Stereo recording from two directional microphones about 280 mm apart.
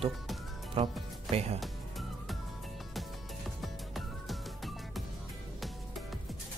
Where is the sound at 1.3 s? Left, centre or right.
Right.